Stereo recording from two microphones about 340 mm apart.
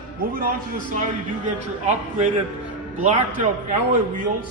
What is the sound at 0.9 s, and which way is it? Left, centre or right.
Speech, right.